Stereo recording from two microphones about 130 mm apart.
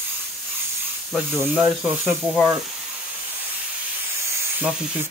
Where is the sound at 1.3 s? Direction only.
15° right (ahead or behind).